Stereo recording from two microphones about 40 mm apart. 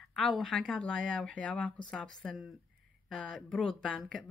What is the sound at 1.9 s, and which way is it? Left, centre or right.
Speech, centre.